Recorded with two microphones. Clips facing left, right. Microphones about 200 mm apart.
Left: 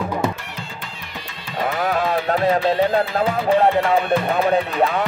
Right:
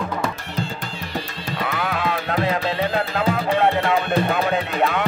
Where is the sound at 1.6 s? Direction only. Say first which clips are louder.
Left 4 dB; 45° left (ahead or behind).